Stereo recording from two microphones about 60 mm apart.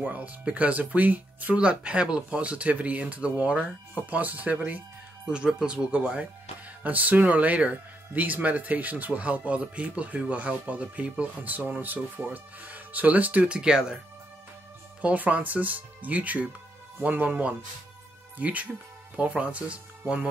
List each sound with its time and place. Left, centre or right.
0.0 s speech: right
15.0 s speech: right